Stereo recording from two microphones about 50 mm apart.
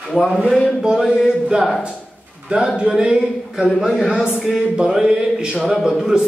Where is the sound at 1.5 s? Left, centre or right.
Right.